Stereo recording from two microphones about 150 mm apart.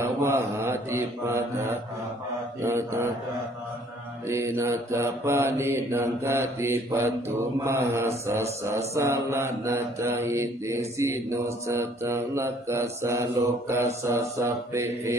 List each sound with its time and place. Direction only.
0.0 s mantra: 20° right (ahead or behind)
4.3 s mantra: 20° right (ahead or behind)